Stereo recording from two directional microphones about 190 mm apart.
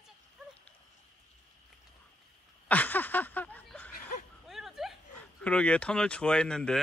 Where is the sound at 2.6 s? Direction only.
10° left (ahead or behind).